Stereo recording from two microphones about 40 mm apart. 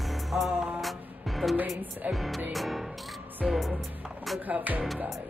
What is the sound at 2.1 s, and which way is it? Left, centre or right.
Speech, centre.